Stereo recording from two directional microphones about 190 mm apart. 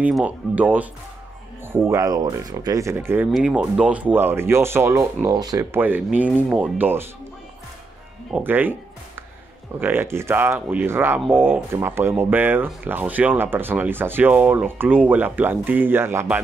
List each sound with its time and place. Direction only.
0.0 s speech: 5° right (ahead or behind)
8.3 s speech: 10° right (ahead or behind)
9.8 s speech: 10° right (ahead or behind)